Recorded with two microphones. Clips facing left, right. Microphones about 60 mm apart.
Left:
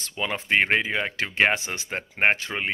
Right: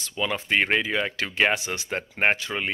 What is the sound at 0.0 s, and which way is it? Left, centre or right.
Speech, left.